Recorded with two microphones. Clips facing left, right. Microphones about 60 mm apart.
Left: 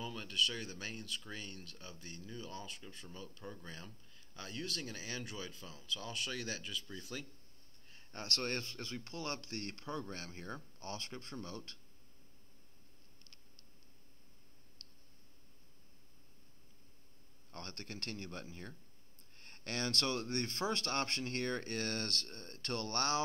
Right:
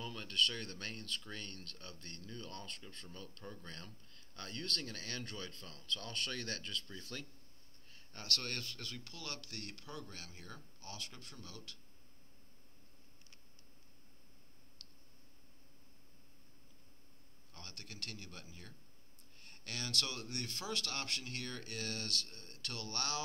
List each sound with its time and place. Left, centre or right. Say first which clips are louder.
0.0 s speech: even; centre
7.9 s speech: left 1 dB; left
14.8 s tick: left 1 dB; left
17.5 s speech: left 6 dB; left